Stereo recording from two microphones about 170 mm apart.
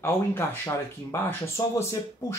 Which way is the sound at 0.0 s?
15° left (ahead or behind).